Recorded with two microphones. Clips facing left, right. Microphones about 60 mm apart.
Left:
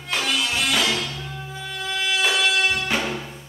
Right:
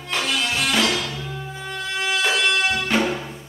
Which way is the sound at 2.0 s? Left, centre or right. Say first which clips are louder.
Right 1 dB; centre.